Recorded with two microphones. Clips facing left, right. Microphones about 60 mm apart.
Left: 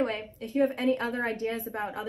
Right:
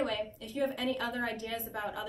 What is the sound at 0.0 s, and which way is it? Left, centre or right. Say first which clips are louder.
A woman's voice: left 3 dB; left.